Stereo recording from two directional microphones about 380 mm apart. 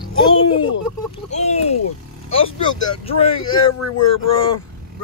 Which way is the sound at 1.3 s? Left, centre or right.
Centre.